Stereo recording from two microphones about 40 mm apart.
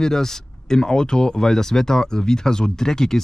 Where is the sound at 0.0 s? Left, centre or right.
Centre.